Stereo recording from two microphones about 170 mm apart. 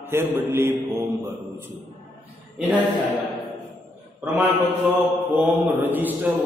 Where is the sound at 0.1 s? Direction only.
15° right (ahead or behind).